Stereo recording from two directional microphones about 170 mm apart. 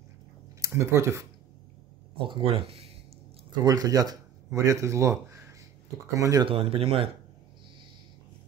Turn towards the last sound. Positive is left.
turn(degrees=-35)  # may be behind; listen again after turning